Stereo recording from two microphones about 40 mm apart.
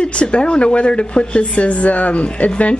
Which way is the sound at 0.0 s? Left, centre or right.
Left.